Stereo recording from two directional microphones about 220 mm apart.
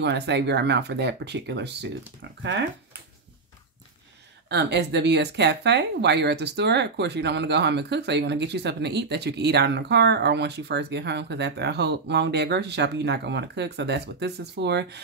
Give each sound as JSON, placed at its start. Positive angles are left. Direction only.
{"t": 0.0, "sound": "speech", "side_deg": -50}
{"t": 4.5, "sound": "speech", "side_deg": -50}